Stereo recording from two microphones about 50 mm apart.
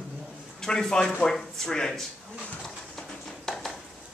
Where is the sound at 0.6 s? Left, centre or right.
Centre.